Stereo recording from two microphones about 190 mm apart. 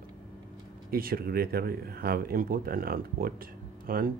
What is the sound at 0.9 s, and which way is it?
Speech, 50° right (ahead or behind).